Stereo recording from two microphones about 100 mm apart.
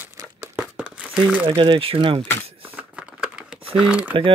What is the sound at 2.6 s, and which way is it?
Typing, 15° right (ahead or behind).